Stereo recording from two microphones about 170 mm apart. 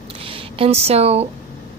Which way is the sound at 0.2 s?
35° right (ahead or behind).